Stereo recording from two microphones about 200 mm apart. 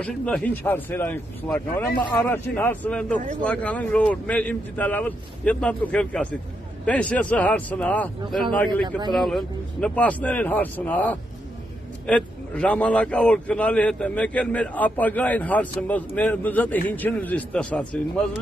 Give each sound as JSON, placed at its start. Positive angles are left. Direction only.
{"t": 0.0, "sound": "a man's voice", "side_deg": 5}